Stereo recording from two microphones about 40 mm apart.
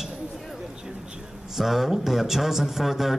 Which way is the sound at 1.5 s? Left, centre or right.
Centre.